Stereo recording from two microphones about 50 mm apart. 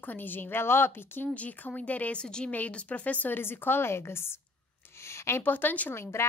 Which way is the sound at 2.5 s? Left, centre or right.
Left.